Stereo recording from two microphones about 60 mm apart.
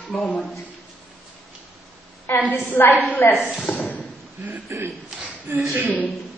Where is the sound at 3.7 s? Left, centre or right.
Left.